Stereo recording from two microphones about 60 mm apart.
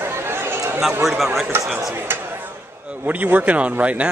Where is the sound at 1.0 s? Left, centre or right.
Centre.